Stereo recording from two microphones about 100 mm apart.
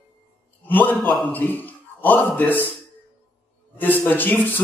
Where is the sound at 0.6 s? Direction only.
20° left (ahead or behind).